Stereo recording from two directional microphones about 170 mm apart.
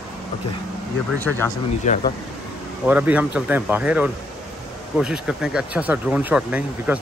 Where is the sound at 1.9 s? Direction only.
45° left (ahead or behind).